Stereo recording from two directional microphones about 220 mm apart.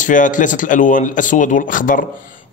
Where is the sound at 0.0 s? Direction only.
35° left (ahead or behind).